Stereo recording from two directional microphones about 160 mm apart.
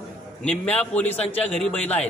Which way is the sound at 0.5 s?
10° left (ahead or behind).